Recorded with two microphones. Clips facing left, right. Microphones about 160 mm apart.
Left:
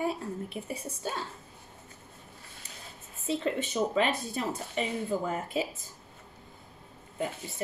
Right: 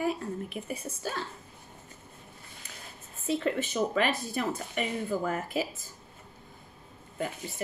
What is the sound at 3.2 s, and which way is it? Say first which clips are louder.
A woman's voice: right 1 dB; 25° left (ahead or behind).